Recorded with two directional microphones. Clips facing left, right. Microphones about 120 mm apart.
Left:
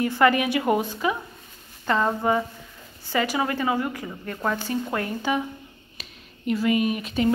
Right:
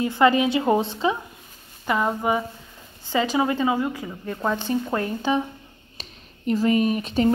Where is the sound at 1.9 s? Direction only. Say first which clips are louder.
Even; 10° right (ahead or behind).